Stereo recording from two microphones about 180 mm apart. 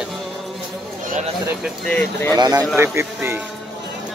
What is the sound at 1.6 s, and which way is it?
Speech, 5° left (ahead or behind).